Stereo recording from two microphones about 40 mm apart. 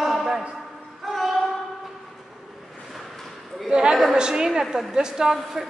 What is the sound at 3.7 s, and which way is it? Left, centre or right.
A woman's voice, centre.